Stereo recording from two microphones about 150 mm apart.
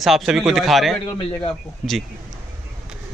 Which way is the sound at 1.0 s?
30° left (ahead or behind).